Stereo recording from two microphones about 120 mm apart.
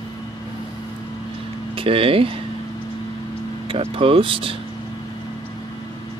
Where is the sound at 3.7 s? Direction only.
50° right (ahead or behind).